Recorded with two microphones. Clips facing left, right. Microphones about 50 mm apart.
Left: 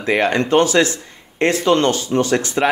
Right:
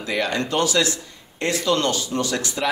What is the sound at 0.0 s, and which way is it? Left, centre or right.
Speech, left.